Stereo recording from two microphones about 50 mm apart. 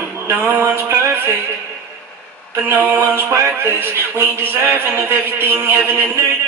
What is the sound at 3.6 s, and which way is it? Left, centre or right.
A man's voice, right.